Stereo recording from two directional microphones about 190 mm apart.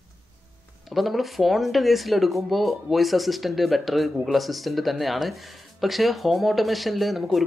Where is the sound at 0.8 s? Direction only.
Centre (ahead or behind).